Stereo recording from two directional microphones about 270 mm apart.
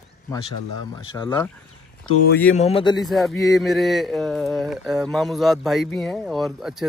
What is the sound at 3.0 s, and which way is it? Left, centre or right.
Mantra, centre.